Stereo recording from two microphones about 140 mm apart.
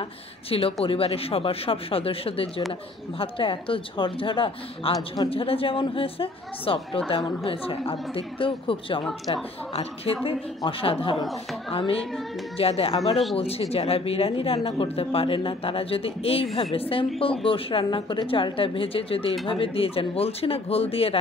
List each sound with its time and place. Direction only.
0.5 s a woman's voice: 40° left (ahead or behind)
5.3 s a woman's voice: 40° left (ahead or behind)